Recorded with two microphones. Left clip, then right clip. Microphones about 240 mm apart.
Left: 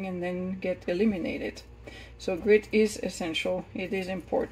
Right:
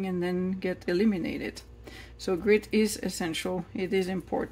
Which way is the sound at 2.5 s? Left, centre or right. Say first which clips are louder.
Left 4 dB; right.